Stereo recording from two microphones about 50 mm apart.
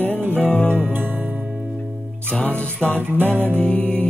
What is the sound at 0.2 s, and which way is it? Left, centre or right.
Music, right.